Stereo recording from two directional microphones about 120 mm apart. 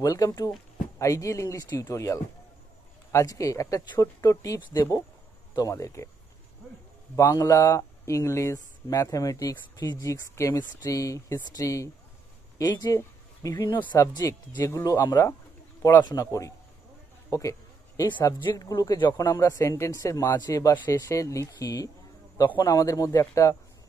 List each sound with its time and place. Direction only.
0.0 s speech: 30° left (ahead or behind)
7.2 s speech: 25° left (ahead or behind)
17.3 s a sound: 30° left (ahead or behind)
18.4 s speech: 35° left (ahead or behind)
20.7 s speech: 15° left (ahead or behind)
21.1 s speech: 25° left (ahead or behind)